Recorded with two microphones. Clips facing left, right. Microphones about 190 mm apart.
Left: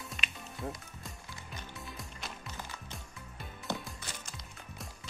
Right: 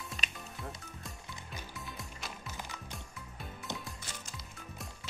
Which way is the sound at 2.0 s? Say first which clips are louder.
Even; centre (ahead or behind).